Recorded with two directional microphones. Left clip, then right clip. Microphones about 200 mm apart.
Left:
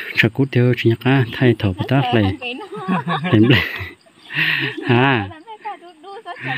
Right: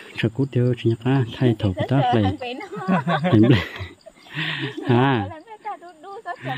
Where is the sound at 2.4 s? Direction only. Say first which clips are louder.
Left 3 dB; 25° right (ahead or behind).